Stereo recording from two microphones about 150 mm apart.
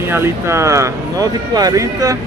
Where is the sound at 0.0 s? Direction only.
15° right (ahead or behind).